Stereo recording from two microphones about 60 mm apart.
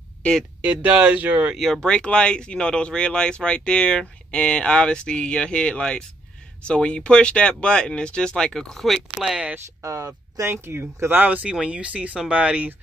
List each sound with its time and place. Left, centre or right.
0.6 s speech: right
1.6 s speech: centre
9.8 s speech: right
10.4 s speech: right